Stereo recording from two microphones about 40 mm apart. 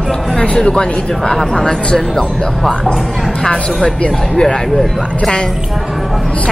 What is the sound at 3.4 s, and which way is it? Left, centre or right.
Speech, left.